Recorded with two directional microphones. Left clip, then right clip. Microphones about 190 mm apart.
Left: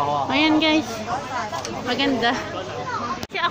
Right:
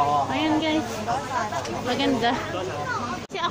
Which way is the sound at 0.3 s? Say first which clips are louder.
Left 5 dB; 55° left (ahead or behind).